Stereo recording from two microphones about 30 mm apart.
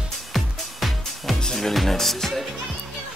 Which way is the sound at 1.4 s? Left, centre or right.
Centre.